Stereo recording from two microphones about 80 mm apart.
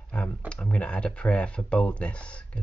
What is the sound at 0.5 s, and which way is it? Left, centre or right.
Speech, centre.